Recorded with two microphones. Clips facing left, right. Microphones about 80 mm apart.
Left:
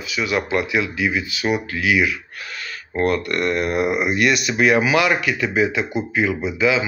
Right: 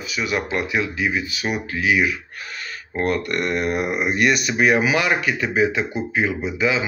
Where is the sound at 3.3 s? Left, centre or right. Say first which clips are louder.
Left 2 dB; centre.